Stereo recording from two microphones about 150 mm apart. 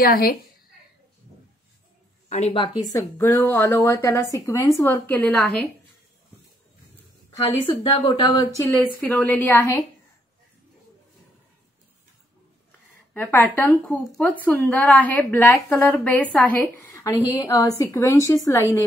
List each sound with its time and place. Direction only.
0.0 s a woman's voice: 85° left
2.2 s a sound: 50° left (ahead or behind)
2.5 s speech: 25° left (ahead or behind); by 5.7 s 5° left (ahead or behind)
7.8 s a woman's voice: 40° left (ahead or behind)
8.1 s a woman's voice: 25° left (ahead or behind)
9.0 s speech: 10° left (ahead or behind)
13.1 s speech: 10° left (ahead or behind)
16.9 s a sound: 20° left (ahead or behind)
17.3 s a woman's voice: 20° left (ahead or behind)